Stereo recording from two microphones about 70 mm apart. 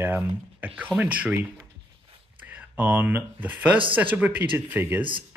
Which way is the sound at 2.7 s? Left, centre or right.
Right.